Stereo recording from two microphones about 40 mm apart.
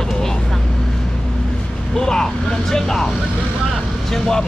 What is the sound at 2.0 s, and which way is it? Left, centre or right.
Speech, centre.